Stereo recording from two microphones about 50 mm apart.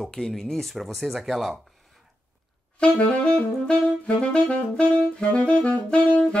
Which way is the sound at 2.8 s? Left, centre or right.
Left.